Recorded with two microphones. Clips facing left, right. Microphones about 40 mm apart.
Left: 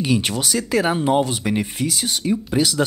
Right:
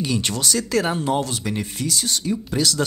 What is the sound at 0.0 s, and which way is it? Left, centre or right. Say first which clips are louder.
Speech: left 3 dB; centre.